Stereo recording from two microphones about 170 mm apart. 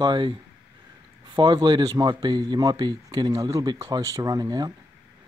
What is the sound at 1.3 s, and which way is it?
Speech, 25° right (ahead or behind).